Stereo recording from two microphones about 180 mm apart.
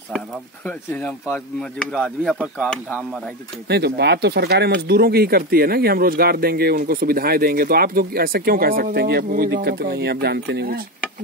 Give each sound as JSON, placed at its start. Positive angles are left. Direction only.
{"t": 0.7, "sound": "speech", "side_deg": 10}
{"t": 3.6, "sound": "speech", "side_deg": -65}